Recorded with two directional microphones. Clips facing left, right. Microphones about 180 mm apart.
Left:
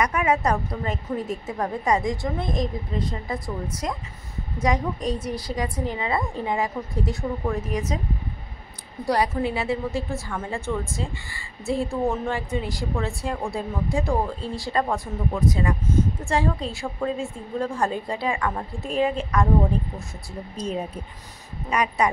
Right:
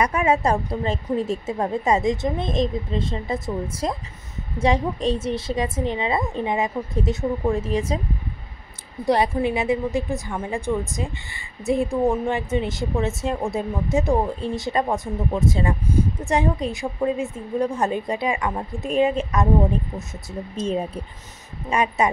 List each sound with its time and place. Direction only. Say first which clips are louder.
0.0 s speech: right 2 dB; 30° right (ahead or behind)
9.0 s speech: right 3 dB; 25° right (ahead or behind)
20.5 s speech: right 4 dB; 25° right (ahead or behind)